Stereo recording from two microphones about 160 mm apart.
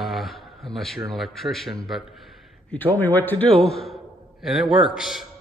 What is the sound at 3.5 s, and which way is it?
Speech, 35° right (ahead or behind).